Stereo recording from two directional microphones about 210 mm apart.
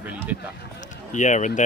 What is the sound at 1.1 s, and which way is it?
Speech, 35° left (ahead or behind).